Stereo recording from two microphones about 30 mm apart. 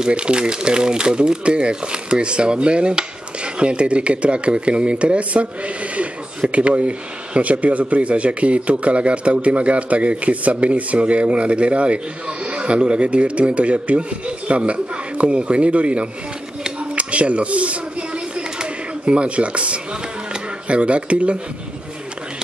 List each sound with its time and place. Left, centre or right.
0.1 s speech: right
6.5 s speech: right
18.6 s a sound: right
20.6 s speech: right